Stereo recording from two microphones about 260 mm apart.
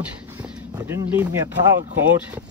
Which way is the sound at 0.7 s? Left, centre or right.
Centre.